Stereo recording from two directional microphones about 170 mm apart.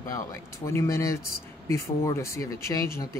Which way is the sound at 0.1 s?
20° left (ahead or behind).